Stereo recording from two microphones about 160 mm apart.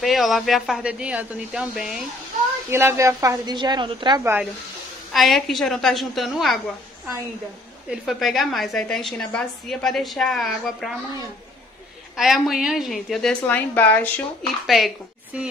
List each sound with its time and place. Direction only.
0.0 s a woman's voice: centre (ahead or behind)
2.7 s a woman's voice: 15° right (ahead or behind)
4.2 s speech: 15° right (ahead or behind)
5.1 s a woman's voice: centre (ahead or behind)
7.9 s a woman's voice: centre (ahead or behind)
12.2 s a woman's voice: centre (ahead or behind)